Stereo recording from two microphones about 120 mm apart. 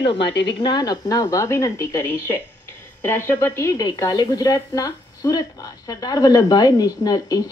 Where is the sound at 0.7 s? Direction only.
30° left (ahead or behind).